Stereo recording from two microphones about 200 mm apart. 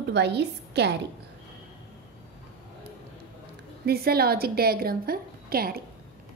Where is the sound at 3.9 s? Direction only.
50° right (ahead or behind).